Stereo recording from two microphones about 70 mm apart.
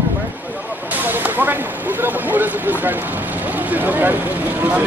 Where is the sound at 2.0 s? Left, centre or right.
Right.